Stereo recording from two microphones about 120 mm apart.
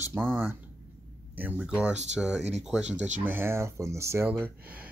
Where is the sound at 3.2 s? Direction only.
20° right (ahead or behind).